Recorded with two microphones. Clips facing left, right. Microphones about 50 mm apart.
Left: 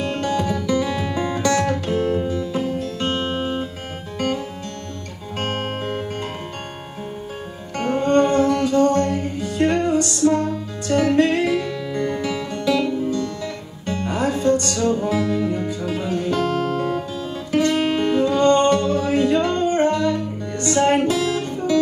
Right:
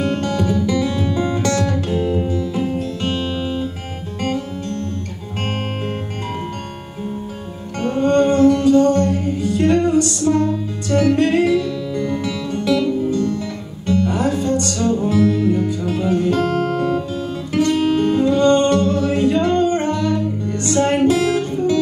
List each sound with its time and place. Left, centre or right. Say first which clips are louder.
0.2 s music: right 3 dB; left
7.8 s music: right 2 dB; left
16.1 s guitar: right 4 dB; right
17.6 s music: right 2 dB; left
19.0 s a capella: right 1 dB; left
19.6 s music: even; left
21.1 s music: right 4 dB; right